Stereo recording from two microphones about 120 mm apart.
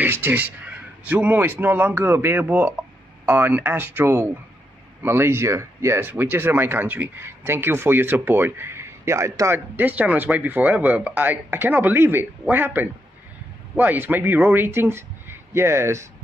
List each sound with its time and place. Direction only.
0.0 s a man's voice: 15° right (ahead or behind)